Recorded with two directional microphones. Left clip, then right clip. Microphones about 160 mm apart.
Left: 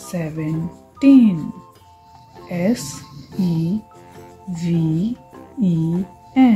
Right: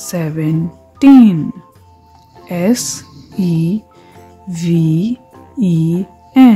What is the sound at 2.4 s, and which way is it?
Speech, 40° right (ahead or behind).